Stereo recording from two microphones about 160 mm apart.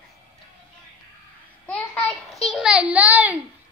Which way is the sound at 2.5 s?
5° right (ahead or behind).